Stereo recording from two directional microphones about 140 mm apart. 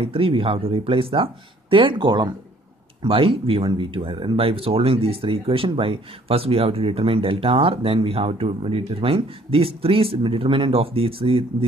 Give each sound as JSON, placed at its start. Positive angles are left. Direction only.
{"t": 0.0, "sound": "speech", "side_deg": -40}